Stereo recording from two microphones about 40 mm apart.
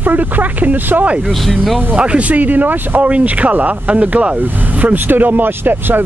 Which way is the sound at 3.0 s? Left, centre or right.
Right.